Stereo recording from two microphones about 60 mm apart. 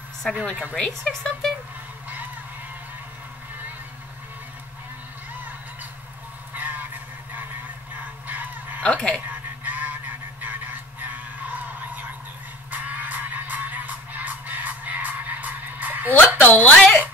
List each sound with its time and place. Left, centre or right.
0.2 s speech: centre
6.5 s honk: right
8.0 s fowl: right
8.8 s speech: centre
9.3 s frog: right
12.7 s music: right
16.3 s a woman's voice: left